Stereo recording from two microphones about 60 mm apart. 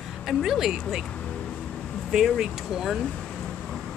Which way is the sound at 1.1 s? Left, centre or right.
Centre.